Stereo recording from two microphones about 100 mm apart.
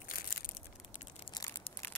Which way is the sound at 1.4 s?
50° left (ahead or behind).